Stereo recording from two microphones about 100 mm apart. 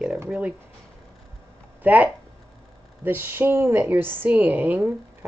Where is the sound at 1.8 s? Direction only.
15° right (ahead or behind).